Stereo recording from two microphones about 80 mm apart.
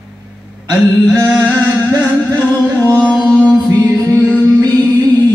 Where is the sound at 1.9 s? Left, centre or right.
Right.